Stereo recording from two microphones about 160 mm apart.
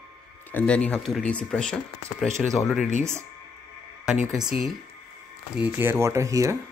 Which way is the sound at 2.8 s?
50° left (ahead or behind).